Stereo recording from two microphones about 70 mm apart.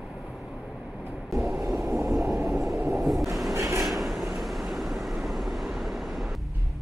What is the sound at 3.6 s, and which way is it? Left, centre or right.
Train, right.